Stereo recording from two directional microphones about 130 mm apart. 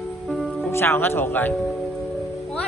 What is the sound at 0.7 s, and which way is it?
Speech, 20° left (ahead or behind).